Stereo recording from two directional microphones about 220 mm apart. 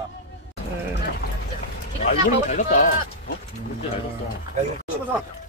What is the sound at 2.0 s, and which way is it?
Speech, 35° left (ahead or behind).